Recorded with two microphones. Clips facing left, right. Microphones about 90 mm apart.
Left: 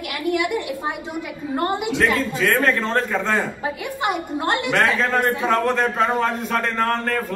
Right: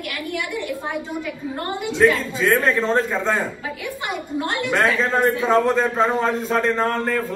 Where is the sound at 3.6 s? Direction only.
55° left (ahead or behind).